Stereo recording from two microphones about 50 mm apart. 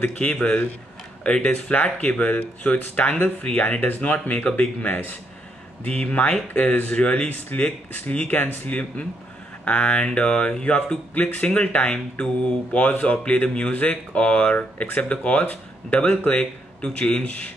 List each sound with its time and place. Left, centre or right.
0.0 s speech: left
3.5 s speech: left
9.7 s speech: left
11.1 s speech: left
11.4 s speech: left